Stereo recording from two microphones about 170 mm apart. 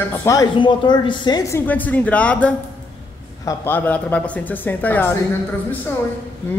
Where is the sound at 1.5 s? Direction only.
10° left (ahead or behind).